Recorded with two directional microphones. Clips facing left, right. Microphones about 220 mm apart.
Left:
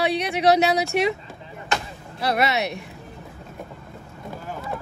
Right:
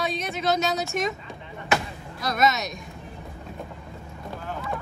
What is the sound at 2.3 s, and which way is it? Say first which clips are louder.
Speech: left 1 dB; 65° left (ahead or behind).